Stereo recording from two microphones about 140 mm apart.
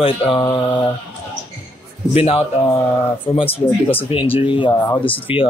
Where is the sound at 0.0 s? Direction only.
40° left (ahead or behind).